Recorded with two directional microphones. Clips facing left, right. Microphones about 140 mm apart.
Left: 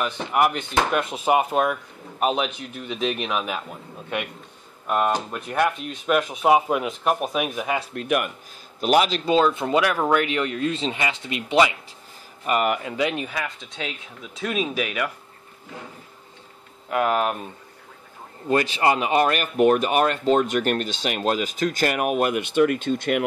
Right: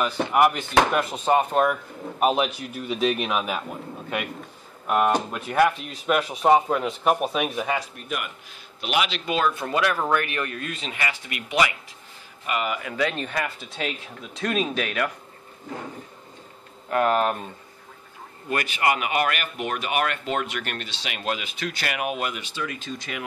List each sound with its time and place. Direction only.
0.0 s speech: centre (ahead or behind)
4.8 s speech: 5° right (ahead or behind)
7.9 s speech: 80° left
8.8 s speech: 40° left (ahead or behind)
12.5 s speech: 35° left (ahead or behind)
12.8 s speech: 20° left (ahead or behind)
13.3 s speech: 5° right (ahead or behind)
16.9 s speech: 10° left (ahead or behind)
18.5 s speech: 25° left (ahead or behind); by 23.2 s 60° left (ahead or behind)